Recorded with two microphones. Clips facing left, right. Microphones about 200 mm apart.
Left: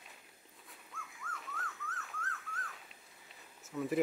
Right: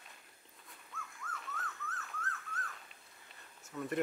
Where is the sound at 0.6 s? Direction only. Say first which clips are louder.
Right 1 dB; 5° left (ahead or behind).